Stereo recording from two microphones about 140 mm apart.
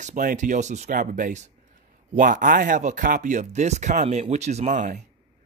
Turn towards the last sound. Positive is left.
turn(degrees=-60)  # may be behind; listen again after turning